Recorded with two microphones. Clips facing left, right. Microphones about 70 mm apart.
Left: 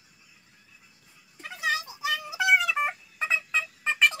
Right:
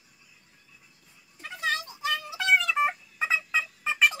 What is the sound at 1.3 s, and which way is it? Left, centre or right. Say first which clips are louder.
Music: left 1 dB; centre.